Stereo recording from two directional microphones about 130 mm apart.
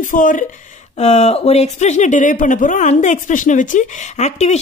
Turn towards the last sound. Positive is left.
turn(degrees=60)  # may be behind; listen again after turning